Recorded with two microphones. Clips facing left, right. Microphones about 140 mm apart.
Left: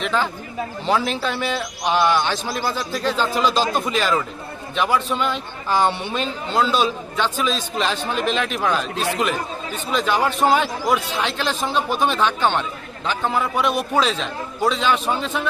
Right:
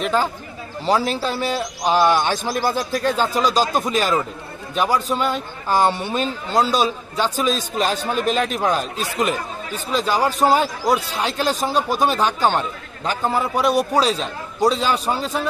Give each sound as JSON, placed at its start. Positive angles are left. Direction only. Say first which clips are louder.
{"t": 0.0, "sound": "a man's voice", "louder": "right 2 dB", "side_deg": -40}
{"t": 9.8, "sound": "a man's voice", "louder": "right 1 dB", "side_deg": -35}